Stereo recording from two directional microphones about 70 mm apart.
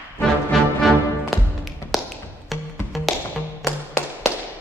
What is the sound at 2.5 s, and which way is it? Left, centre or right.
Music, centre.